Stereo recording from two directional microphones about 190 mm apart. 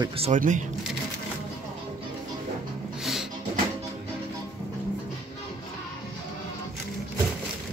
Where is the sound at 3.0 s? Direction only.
Centre (ahead or behind).